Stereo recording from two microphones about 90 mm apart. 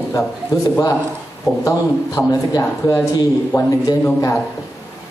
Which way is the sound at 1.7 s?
35° left (ahead or behind).